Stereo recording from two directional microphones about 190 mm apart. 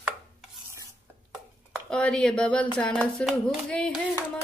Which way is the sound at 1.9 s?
5° left (ahead or behind).